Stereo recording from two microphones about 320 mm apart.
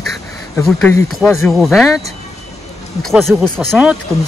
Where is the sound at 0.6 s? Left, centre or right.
Centre.